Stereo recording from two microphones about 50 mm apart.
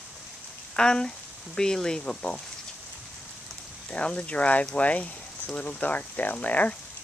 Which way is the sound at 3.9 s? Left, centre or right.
Left.